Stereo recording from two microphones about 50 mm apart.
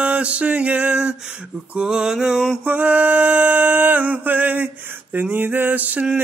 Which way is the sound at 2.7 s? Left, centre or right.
Right.